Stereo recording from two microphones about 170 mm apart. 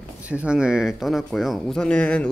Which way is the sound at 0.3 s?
5° right (ahead or behind).